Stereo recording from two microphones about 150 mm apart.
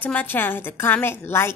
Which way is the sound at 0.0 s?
10° left (ahead or behind).